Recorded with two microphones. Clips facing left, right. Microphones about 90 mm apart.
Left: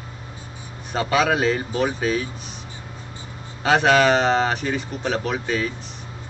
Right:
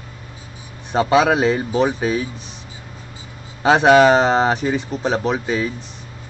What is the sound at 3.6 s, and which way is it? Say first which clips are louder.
Speech: right 5 dB; 20° right (ahead or behind).